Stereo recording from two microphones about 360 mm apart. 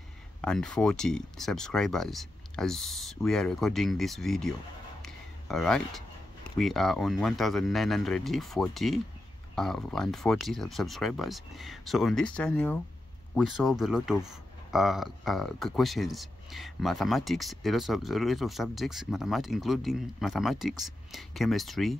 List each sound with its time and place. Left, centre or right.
0.4 s speech: centre
5.0 s a sound: centre
6.6 s speech: centre